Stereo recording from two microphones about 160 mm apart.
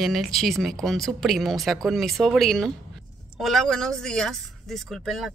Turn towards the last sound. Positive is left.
turn(degrees=0)  # may be behind; listen again after turning